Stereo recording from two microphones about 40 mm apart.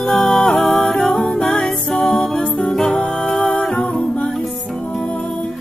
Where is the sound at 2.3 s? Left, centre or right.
Left.